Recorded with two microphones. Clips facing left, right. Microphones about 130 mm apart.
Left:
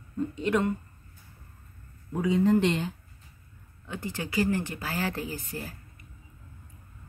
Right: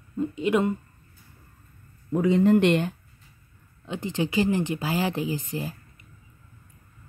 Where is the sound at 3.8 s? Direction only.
20° right (ahead or behind).